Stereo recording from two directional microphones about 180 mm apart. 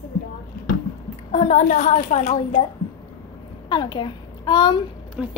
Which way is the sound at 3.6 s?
25° left (ahead or behind).